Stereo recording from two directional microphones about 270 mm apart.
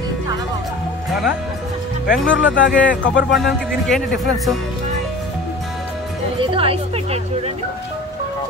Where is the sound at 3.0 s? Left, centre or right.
Left.